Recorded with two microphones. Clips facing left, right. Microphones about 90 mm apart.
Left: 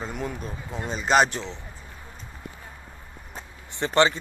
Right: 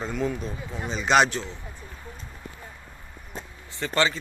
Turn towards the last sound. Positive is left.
turn(degrees=25)  # may be behind; listen again after turning